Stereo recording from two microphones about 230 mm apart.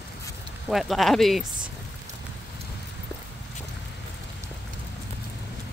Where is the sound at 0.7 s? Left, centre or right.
Centre.